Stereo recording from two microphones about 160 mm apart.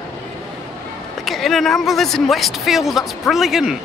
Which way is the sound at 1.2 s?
Centre (ahead or behind).